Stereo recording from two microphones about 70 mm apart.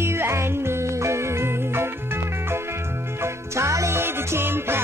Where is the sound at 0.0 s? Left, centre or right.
Right.